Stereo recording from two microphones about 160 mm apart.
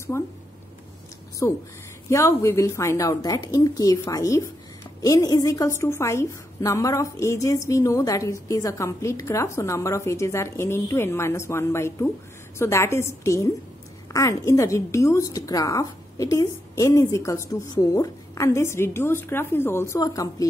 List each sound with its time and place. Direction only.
0.1 s a woman's voice: 15° left (ahead or behind)
1.4 s a woman's voice: 20° left (ahead or behind)